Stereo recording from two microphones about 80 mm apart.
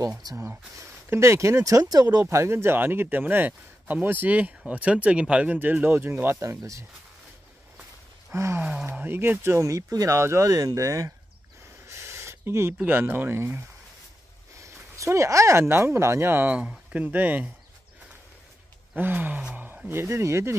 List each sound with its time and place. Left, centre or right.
0.2 s speech: right
0.7 s speech: right
2.2 s speech: right
6.2 s speech: right
8.3 s speech: right
11.9 s a sound: right
12.8 s speech: right
14.5 s a sound: right
15.7 s speech: right
16.5 s speech: centre
18.9 s speech: right
19.5 s a sound: right
19.9 s speech: right